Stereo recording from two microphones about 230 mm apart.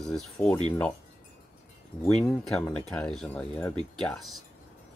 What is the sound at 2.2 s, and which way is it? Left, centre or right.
Speech, centre.